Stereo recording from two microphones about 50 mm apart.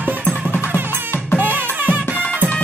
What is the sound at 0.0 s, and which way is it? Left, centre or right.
Music, left.